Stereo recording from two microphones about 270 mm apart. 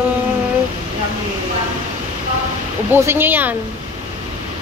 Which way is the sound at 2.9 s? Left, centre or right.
Centre.